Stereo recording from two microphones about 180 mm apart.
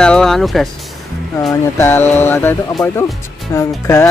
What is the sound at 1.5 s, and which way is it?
Speech, 15° left (ahead or behind).